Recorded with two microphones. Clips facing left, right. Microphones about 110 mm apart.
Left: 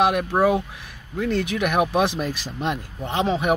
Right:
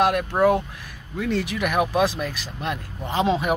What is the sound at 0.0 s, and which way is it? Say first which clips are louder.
Speech: even; 10° left (ahead or behind).